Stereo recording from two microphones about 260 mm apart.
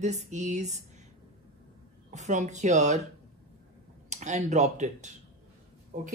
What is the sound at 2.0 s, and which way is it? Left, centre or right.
Speech, right.